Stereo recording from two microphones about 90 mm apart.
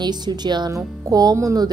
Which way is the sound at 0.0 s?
50° right (ahead or behind).